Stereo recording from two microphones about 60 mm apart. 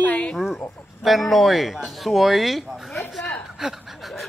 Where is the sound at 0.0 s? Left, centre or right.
Left.